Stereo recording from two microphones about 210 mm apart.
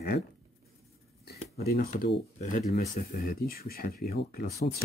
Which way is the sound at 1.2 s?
50° left (ahead or behind).